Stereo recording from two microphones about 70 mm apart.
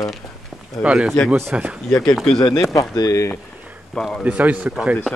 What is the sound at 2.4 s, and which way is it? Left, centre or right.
Speech, left.